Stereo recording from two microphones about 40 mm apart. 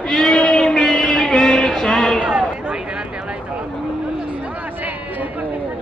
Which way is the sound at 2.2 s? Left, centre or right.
Right.